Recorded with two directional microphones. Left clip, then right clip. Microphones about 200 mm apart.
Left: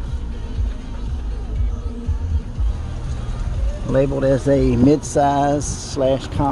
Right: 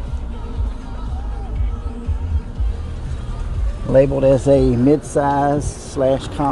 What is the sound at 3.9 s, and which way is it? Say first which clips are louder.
Speech: right 4 dB; 15° right (ahead or behind).